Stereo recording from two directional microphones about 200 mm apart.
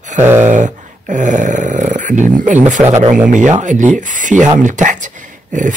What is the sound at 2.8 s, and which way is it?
Speech, 10° right (ahead or behind).